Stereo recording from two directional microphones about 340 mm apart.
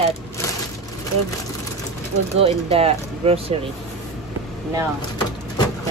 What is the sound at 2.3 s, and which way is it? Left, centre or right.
Speech, centre.